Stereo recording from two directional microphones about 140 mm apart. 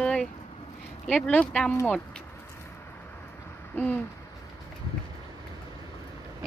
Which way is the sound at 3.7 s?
10° left (ahead or behind).